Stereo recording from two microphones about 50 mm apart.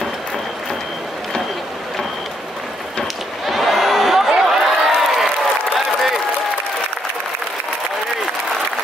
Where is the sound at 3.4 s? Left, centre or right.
Centre.